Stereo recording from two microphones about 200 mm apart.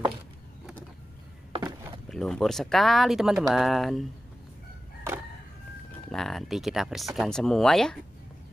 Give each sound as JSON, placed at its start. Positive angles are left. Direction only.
{"t": 1.5, "sound": "a sound", "side_deg": -20}
{"t": 2.0, "sound": "speech", "side_deg": 0}
{"t": 6.1, "sound": "speech", "side_deg": 0}